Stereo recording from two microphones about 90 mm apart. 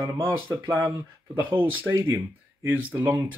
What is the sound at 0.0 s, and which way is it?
Speech, 35° right (ahead or behind).